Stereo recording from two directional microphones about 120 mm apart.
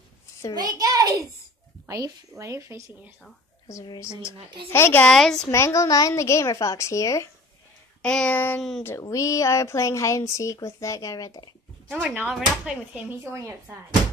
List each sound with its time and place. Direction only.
0.6 s a woman's voice: 30° right (ahead or behind)
3.6 s speech: 30° left (ahead or behind)
5.0 s a woman's voice: 5° left (ahead or behind)
5.5 s speech: 25° left (ahead or behind)
8.0 s a sound: 10° left (ahead or behind)
9.0 s speech: 25° left (ahead or behind)
11.9 s speech: 10° right (ahead or behind); by 13.6 s 25° right (ahead or behind)